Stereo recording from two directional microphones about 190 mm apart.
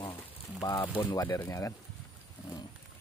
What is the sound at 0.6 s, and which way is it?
Speech, 20° left (ahead or behind).